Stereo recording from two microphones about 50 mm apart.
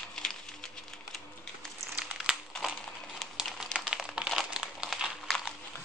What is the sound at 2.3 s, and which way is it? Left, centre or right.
Crumpling, centre.